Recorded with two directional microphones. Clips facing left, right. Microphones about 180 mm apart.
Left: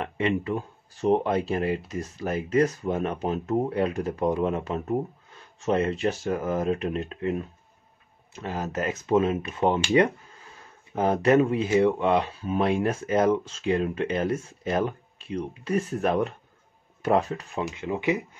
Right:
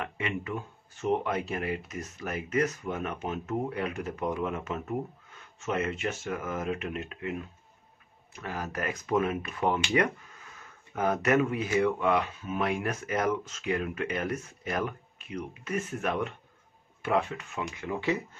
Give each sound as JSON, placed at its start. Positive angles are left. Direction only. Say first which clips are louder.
{"t": 0.0, "sound": "speech", "louder": "left 8 dB", "side_deg": 30}